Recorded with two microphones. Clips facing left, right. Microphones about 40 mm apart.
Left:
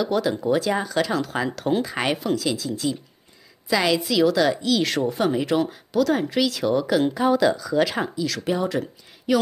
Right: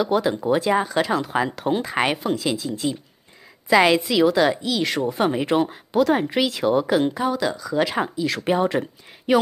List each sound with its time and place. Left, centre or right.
0.0 s speech: centre
2.3 s speech: right
4.6 s speech: centre
5.1 s speech: right
7.2 s speech: centre
7.9 s speech: right
8.5 s speech: right